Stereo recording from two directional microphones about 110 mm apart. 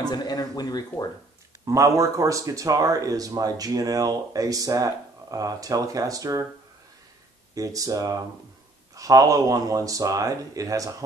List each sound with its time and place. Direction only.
0.0 s speech: 40° left (ahead or behind)
1.7 s speech: 30° right (ahead or behind)
7.5 s speech: 30° right (ahead or behind)